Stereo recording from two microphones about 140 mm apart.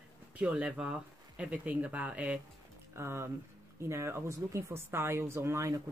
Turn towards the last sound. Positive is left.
turn(degrees=-20)  # may be behind; listen again after turning